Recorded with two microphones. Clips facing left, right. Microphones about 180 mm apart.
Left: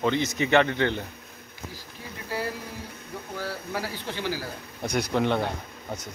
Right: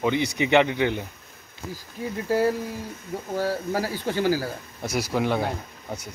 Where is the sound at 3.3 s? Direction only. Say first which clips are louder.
Right 7 dB; 45° right (ahead or behind).